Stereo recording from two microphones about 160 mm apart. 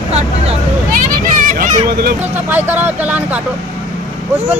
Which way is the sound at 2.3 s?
10° right (ahead or behind).